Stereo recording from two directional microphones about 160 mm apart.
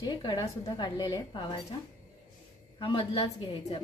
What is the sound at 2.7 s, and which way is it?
A woman's voice, 30° left (ahead or behind).